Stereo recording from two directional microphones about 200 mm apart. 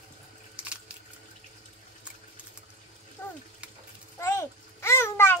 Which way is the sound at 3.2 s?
10° left (ahead or behind).